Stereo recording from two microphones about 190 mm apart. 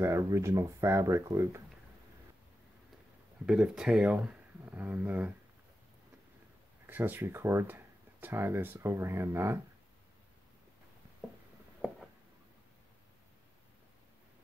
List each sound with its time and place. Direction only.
0.0 s speech: 15° right (ahead or behind)
3.4 s speech: 5° right (ahead or behind)
6.9 s speech: 10° right (ahead or behind)